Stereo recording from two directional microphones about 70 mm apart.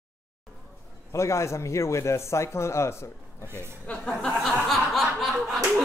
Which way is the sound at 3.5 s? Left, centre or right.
Right.